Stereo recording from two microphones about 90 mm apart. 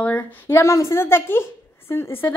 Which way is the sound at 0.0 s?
20° left (ahead or behind).